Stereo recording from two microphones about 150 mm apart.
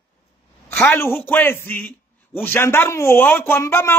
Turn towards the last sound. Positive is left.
turn(degrees=15)  # may be behind; listen again after turning